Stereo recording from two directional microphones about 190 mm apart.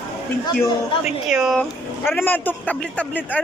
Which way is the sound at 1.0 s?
Centre (ahead or behind).